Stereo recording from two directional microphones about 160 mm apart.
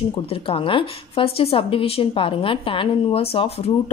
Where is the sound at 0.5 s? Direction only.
35° left (ahead or behind).